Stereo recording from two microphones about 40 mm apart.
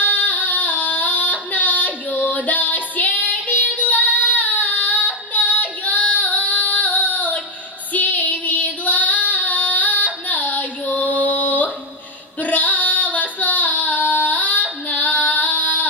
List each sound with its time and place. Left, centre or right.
0.0 s female singing: left